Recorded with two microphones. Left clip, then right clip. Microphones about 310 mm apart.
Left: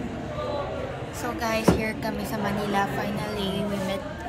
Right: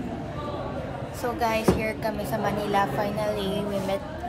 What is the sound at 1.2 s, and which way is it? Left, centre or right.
A woman's voice, centre.